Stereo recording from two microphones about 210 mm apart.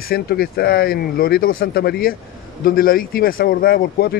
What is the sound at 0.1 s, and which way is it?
Speech, 45° left (ahead or behind).